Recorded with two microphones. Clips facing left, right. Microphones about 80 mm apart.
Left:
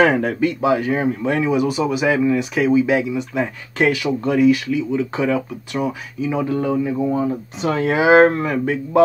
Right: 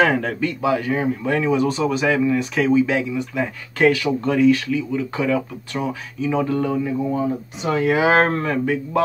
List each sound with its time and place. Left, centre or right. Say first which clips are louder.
0.0 s speech: left 3 dB; left
2.1 s speech: left 1 dB; left
2.5 s speech: left 2 dB; centre
7.2 s speech: left 2 dB; left
8.0 s speech: left 9 dB; centre